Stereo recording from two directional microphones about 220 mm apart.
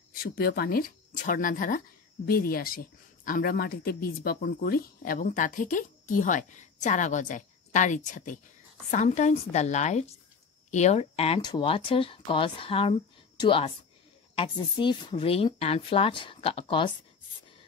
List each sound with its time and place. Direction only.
0.1 s speech: 45° left (ahead or behind); by 16.9 s 25° left (ahead or behind)